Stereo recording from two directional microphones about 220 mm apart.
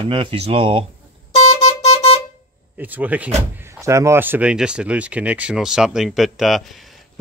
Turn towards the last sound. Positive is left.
turn(degrees=0)  # may be behind; listen again after turning